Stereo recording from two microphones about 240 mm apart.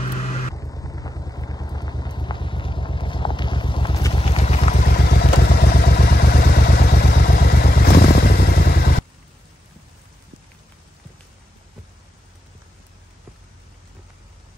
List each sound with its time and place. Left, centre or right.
0.6 s vehicle: centre
5.0 s vehicle: left